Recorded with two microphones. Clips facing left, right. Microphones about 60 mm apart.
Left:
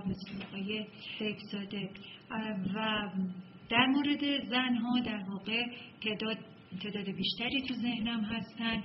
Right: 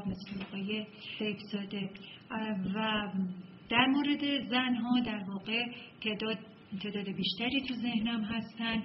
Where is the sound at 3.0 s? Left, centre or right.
Right.